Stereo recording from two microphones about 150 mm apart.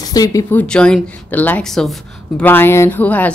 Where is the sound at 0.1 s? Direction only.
25° left (ahead or behind).